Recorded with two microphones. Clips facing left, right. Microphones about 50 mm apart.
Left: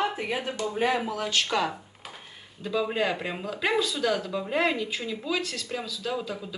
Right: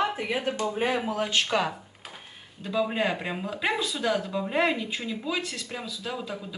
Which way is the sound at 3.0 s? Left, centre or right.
Centre.